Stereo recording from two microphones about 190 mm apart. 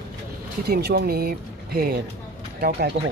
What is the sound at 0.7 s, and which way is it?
A man's voice, 55° right (ahead or behind).